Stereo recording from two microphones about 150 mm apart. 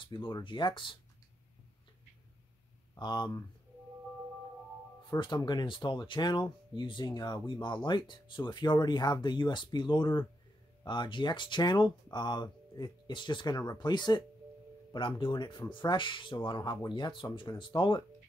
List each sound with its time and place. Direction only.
0.0 s speech: 30° left (ahead or behind)
2.9 s speech: 30° left (ahead or behind)
5.2 s speech: 30° left (ahead or behind)